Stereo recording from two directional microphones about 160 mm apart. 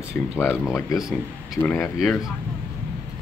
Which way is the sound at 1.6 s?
15° left (ahead or behind).